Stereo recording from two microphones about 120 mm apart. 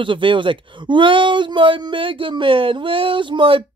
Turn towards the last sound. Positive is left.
turn(degrees=-45)  # may be behind; listen again after turning